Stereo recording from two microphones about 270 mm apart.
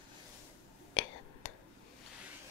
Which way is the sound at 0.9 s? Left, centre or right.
Left.